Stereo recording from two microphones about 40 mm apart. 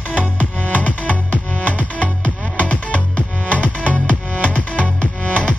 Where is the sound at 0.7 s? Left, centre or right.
Left.